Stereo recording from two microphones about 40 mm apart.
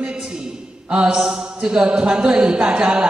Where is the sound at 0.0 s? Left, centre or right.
Right.